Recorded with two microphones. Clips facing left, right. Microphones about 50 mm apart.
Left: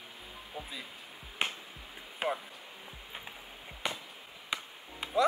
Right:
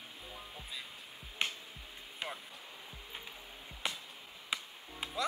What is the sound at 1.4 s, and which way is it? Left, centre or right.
Music, centre.